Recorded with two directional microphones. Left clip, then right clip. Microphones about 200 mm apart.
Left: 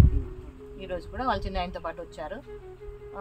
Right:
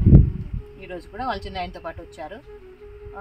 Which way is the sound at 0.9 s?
15° left (ahead or behind).